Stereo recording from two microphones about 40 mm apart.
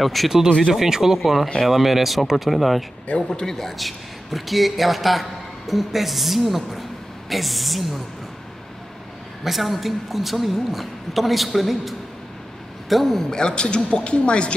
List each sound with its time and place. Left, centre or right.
0.0 s speech: centre
0.7 s speech: centre
3.2 s speech: centre
9.4 s speech: centre
12.9 s speech: centre; by 14.5 s left